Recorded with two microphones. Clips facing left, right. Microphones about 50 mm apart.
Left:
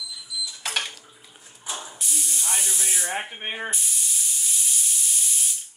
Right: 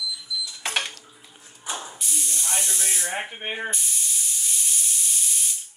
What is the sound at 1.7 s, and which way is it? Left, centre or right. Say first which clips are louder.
Spray: even; centre.